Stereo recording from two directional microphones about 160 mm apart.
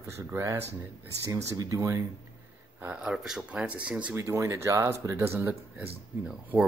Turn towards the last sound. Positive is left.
turn(degrees=-5)  # may be behind; listen again after turning